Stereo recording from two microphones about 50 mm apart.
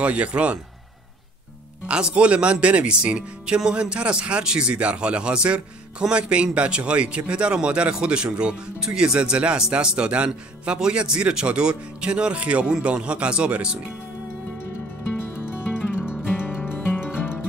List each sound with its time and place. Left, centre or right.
0.0 s speech: right
1.9 s speech: right
15.3 s music: left